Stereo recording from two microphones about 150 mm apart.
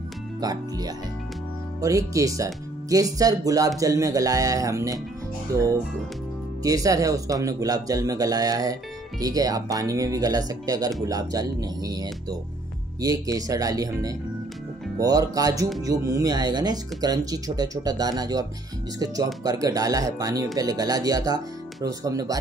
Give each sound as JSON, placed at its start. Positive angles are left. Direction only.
{"t": 0.4, "sound": "speech", "side_deg": -25}